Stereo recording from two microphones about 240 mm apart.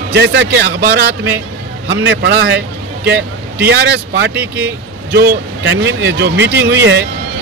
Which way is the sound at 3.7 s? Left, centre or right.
Right.